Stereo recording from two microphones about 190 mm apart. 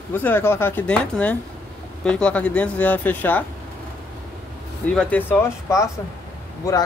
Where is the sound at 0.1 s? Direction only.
10° left (ahead or behind).